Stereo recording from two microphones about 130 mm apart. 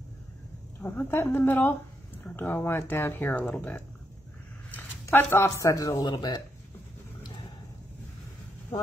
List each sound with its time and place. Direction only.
0.7 s speech: 15° left (ahead or behind); by 6.4 s 35° left (ahead or behind)